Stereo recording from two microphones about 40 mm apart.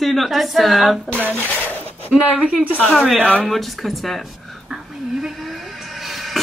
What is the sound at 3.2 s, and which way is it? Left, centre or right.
Speech, right.